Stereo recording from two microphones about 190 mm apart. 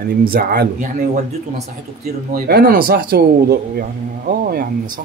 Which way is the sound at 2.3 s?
50° right (ahead or behind).